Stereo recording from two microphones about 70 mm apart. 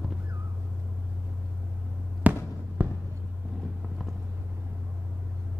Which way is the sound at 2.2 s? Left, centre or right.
Right.